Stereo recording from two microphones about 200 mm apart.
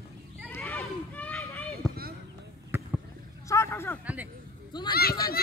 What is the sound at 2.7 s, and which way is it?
Basketball bounce, 10° right (ahead or behind).